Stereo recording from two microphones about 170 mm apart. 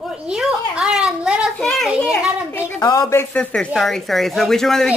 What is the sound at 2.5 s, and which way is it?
Speech, 20° left (ahead or behind).